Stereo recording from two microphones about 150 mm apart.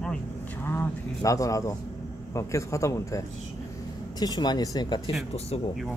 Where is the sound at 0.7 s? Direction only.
20° left (ahead or behind).